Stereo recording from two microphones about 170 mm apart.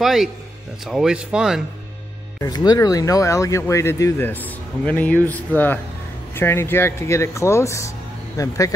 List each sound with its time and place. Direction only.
0.0 s speech: centre (ahead or behind)
2.4 s speech: 25° left (ahead or behind)